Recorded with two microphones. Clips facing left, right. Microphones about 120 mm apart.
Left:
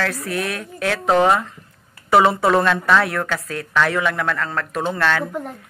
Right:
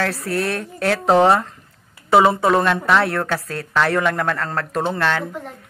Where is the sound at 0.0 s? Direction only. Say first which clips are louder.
Right 2 dB; 30° right (ahead or behind).